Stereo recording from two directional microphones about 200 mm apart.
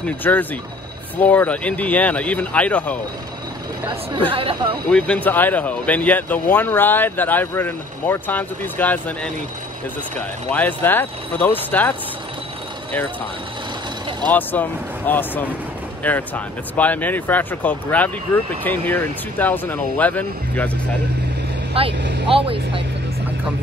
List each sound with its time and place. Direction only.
0.0 s speech: 10° left (ahead or behind)
4.3 s speech: 25° right (ahead or behind)
4.8 s speech: 5° left (ahead or behind)
10.5 s speech: 10° left (ahead or behind)
14.3 s speech: 10° left (ahead or behind)
22.0 s speech: 60° right (ahead or behind)
22.3 s speech: 25° right (ahead or behind)